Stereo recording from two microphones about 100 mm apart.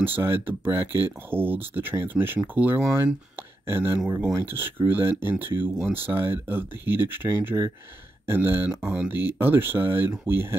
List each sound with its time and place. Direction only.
0.0 s speech: 20° right (ahead or behind)